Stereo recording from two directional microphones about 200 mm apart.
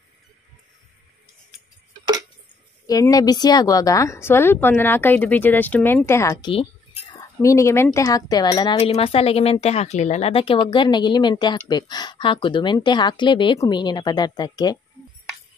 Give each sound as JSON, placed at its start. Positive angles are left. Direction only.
{"t": 2.9, "sound": "speech", "side_deg": 20}